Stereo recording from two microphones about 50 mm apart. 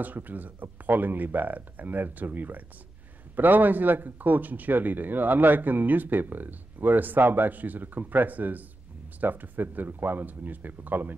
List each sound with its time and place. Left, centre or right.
0.0 s speech: right